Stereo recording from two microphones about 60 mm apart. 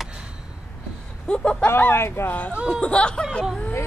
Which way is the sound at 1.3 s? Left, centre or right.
Centre.